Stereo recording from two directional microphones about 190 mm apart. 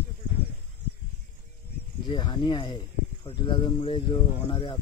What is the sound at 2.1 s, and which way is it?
Speech, 25° left (ahead or behind).